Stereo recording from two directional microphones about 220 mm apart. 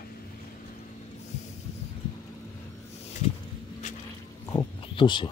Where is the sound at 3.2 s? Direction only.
30° left (ahead or behind).